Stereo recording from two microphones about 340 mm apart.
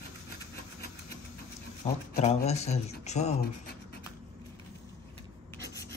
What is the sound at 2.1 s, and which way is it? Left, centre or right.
Speech, centre.